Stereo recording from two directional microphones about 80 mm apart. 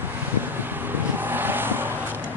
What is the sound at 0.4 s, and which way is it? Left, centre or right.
Vehicle, right.